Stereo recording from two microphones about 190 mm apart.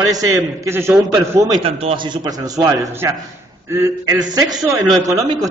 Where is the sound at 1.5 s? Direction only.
30° right (ahead or behind).